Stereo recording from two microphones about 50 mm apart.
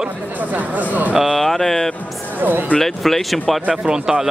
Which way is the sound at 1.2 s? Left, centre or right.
Centre.